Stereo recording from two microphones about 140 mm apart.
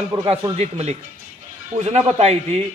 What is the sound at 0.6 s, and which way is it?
A man's voice, 50° right (ahead or behind).